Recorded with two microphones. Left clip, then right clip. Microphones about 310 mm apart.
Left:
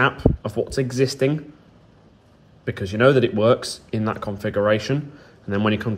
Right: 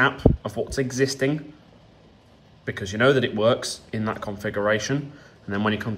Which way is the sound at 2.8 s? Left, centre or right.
Centre.